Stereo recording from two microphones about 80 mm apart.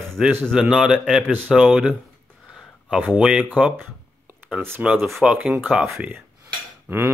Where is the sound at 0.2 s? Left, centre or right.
Centre.